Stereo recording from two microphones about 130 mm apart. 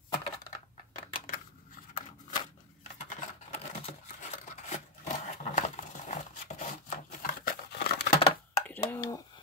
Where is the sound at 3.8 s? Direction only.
65° left (ahead or behind); by 7.5 s 90° left.